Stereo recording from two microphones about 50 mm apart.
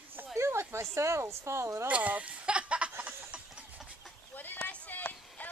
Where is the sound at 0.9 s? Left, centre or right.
Right.